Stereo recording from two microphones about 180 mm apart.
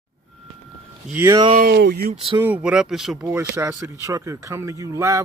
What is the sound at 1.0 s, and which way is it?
Speech, 10° right (ahead or behind).